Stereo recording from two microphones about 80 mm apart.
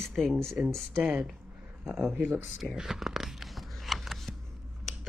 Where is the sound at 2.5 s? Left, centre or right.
Centre.